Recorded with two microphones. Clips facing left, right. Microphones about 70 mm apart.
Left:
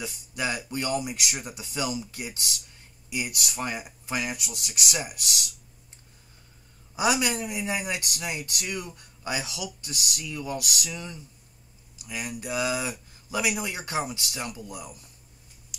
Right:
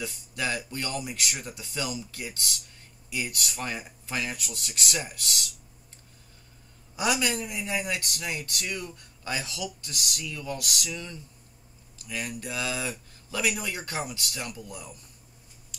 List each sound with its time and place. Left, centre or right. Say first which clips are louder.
0.0 s speech: left 1 dB; centre
7.0 s speech: left 2 dB; centre